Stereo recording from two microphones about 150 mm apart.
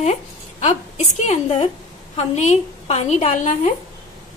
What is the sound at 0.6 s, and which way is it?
A woman's voice, 50° left (ahead or behind).